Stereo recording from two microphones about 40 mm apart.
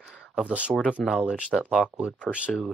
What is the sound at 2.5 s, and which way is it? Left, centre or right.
Speech, centre.